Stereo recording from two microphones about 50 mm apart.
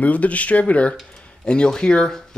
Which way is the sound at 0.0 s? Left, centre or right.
Left.